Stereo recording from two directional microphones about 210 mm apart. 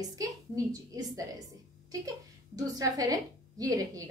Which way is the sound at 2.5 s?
15° right (ahead or behind).